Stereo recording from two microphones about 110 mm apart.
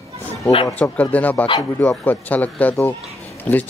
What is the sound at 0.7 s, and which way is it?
Speech, 15° left (ahead or behind).